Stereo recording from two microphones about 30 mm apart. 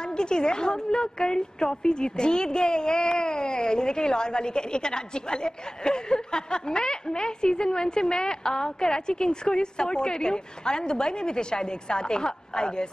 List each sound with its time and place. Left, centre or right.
0.0 s a woman's voice: left